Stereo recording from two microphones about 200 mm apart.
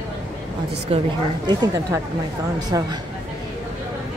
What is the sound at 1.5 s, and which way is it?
Speech, 20° right (ahead or behind).